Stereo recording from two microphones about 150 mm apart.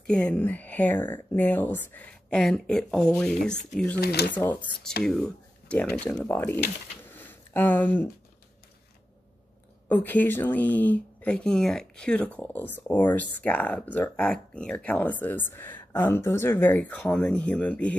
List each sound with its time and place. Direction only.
0.0 s speech: 5° left (ahead or behind)
4.0 s speech: 90° left
4.3 s speech: 10° left (ahead or behind)
7.2 s a sound: 10° left (ahead or behind)
9.8 s speech: 10° left (ahead or behind)